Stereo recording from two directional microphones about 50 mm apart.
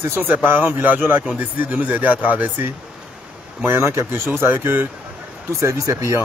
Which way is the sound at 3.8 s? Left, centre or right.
Right.